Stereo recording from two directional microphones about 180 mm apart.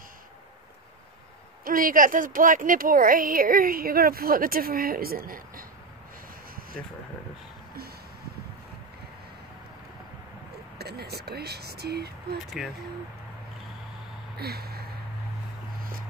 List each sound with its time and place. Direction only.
1.6 s speech: 50° right (ahead or behind)
10.8 s speech: 60° right (ahead or behind)
12.6 s speech: centre (ahead or behind)
14.4 s a sound: 60° right (ahead or behind)